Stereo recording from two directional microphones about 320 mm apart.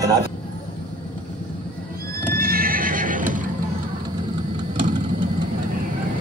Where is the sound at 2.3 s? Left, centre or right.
Right.